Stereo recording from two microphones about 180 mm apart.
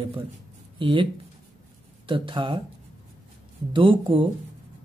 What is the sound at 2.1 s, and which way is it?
Speech, 30° right (ahead or behind).